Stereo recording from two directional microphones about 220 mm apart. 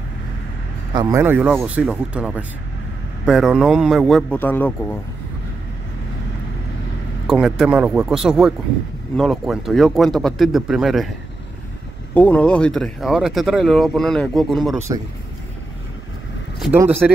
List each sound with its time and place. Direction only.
0.9 s speech: 15° right (ahead or behind); by 4.9 s 10° left (ahead or behind)
7.2 s speech: centre (ahead or behind)
12.1 s speech: 5° left (ahead or behind)
16.6 s speech: 10° right (ahead or behind)